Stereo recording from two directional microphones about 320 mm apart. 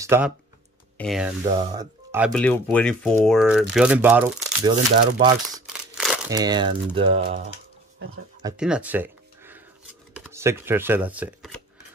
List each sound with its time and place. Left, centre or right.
0.0 s speech: centre
1.4 s speech: centre
4.6 s speech: centre
5.7 s crumpling: centre
7.0 s speech: centre
8.4 s a sound: centre
10.1 s speech: centre